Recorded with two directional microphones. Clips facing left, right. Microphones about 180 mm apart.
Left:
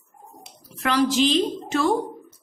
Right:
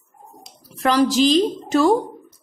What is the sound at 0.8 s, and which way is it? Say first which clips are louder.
A woman's voice: right 4 dB; 40° right (ahead or behind).